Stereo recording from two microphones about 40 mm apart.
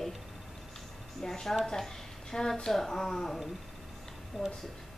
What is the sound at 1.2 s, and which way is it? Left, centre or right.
Speech, centre.